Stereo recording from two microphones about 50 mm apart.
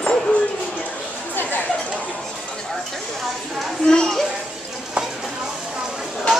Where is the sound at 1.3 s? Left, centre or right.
Left.